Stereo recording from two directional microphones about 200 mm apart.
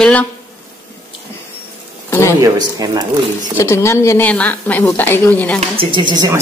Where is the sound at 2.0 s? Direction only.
15° left (ahead or behind).